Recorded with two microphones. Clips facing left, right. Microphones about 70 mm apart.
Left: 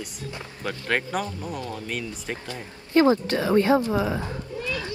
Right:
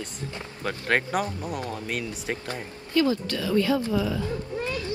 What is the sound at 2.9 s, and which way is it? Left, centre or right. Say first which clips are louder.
Speech: left 5 dB; left.